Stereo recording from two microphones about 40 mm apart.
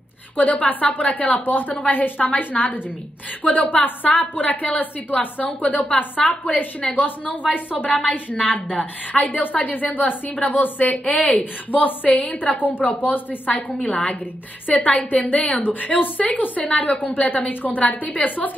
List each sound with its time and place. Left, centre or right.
0.4 s a woman's voice: left
1.4 s a woman's voice: left
7.5 s a woman's voice: left
11.7 s a woman's voice: left
12.1 s a woman's voice: left
12.4 s a woman's voice: left
15.6 s a woman's voice: left